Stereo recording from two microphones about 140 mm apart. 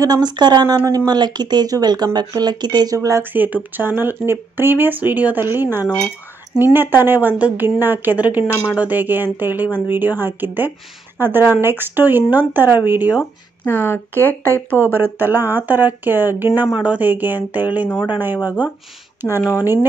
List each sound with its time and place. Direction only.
0.0 s speech: 30° right (ahead or behind)
3.3 s speech: 10° right (ahead or behind)
13.2 s speech: 15° left (ahead or behind)
15.0 s speech: 15° right (ahead or behind)